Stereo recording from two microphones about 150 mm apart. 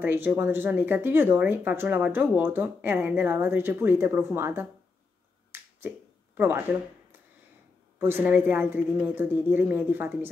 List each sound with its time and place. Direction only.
0.0 s speech: 10° right (ahead or behind)
5.5 s finger snapping: 15° right (ahead or behind)
8.0 s speech: 10° right (ahead or behind)